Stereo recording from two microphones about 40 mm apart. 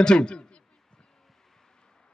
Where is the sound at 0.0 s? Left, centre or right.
Left.